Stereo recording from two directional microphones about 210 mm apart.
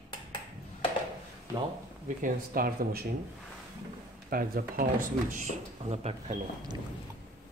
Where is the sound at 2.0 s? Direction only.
40° right (ahead or behind).